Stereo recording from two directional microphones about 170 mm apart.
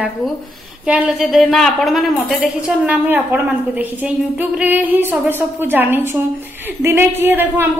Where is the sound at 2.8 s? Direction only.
10° right (ahead or behind).